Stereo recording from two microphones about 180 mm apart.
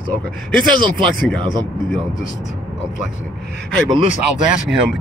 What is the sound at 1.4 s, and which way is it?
Speech, 25° right (ahead or behind).